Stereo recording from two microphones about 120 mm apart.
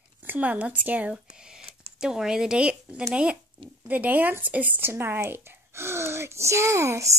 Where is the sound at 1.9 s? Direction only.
5° right (ahead or behind); by 7.1 s 25° right (ahead or behind).